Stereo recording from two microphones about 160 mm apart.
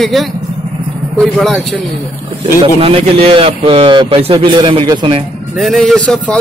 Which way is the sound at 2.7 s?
35° right (ahead or behind).